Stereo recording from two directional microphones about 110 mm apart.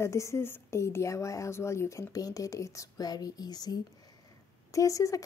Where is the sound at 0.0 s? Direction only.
25° left (ahead or behind).